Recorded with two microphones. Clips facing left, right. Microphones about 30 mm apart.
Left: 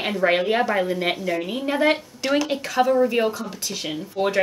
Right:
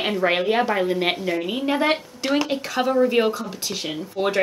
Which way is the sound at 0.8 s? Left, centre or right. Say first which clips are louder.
Right 1 dB; right.